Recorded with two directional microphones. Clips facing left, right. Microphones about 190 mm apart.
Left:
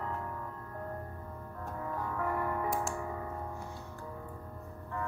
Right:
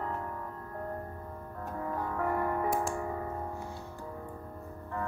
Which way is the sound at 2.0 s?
40° right (ahead or behind).